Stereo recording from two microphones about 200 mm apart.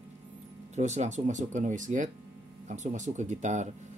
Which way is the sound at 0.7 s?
35° right (ahead or behind).